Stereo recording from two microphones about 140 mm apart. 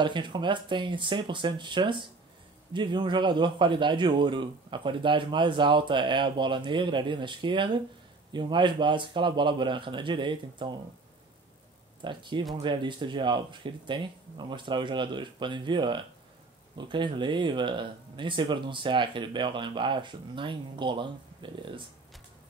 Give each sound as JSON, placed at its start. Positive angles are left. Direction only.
{"t": 0.0, "sound": "a man's voice", "side_deg": -35}
{"t": 12.0, "sound": "a man's voice", "side_deg": -35}